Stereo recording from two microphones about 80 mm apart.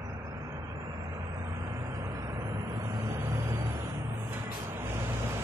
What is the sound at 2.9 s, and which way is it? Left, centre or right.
Vehicle, right.